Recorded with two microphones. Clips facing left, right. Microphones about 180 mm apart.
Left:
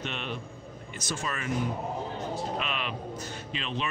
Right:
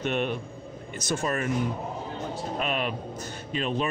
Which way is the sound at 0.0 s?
50° right (ahead or behind).